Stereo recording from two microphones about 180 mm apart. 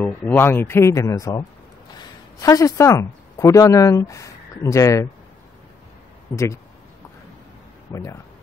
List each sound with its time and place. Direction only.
0.0 s speech: 10° left (ahead or behind)
2.4 s speech: 20° left (ahead or behind)
6.3 s speech: 15° left (ahead or behind)
7.9 s speech: 15° left (ahead or behind)